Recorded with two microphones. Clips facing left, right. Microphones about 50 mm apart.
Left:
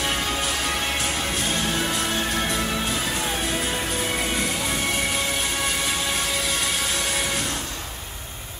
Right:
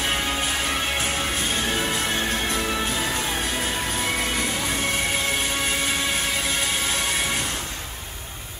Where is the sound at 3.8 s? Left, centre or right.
Right.